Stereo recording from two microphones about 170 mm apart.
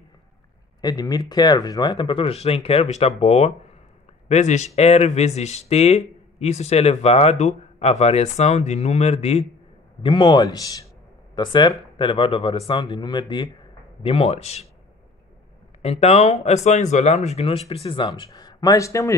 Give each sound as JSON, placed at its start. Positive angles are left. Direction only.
{"t": 0.7, "sound": "speech", "side_deg": 25}
{"t": 10.0, "sound": "speech", "side_deg": 30}
{"t": 15.8, "sound": "speech", "side_deg": 35}